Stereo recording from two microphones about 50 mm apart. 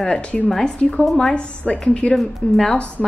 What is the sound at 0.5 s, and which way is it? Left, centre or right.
A woman's voice, centre.